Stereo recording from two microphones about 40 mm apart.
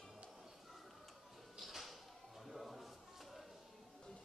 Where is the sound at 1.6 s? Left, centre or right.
Centre.